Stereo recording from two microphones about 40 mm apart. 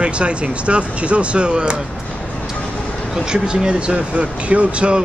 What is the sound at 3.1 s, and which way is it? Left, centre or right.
Speech, centre.